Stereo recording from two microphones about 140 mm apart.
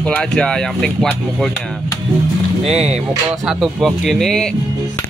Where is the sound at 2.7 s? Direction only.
50° right (ahead or behind).